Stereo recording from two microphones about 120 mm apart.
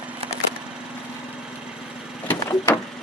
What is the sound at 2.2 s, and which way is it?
Vehicle, 20° left (ahead or behind).